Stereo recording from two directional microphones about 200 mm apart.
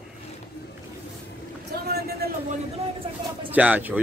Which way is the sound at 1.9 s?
50° right (ahead or behind).